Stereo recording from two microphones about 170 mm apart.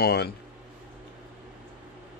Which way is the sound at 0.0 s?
70° left (ahead or behind).